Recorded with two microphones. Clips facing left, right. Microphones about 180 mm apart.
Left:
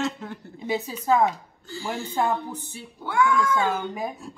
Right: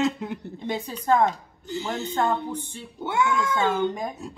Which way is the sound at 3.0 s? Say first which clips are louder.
Left 2 dB; 20° right (ahead or behind).